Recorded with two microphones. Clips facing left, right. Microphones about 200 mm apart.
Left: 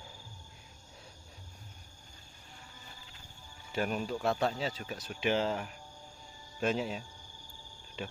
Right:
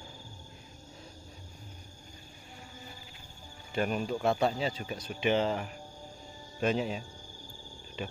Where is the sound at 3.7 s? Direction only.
Centre (ahead or behind).